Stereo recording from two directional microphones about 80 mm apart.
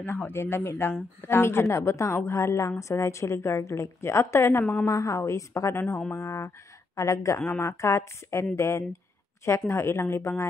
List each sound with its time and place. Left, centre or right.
0.0 s a woman's voice: left